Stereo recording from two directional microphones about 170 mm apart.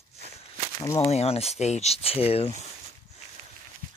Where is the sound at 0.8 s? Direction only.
20° left (ahead or behind).